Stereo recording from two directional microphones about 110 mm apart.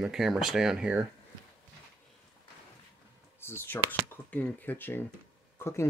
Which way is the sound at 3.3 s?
20° left (ahead or behind).